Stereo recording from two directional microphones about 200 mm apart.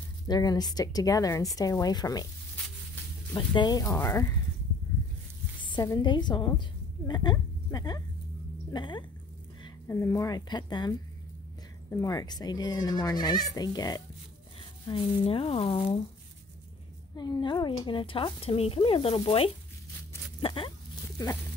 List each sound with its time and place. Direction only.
0.3 s a woman's voice: 20° left (ahead or behind)
3.3 s a woman's voice: 20° left (ahead or behind)
5.6 s speech: 20° left (ahead or behind)
17.2 s speech: 20° left (ahead or behind)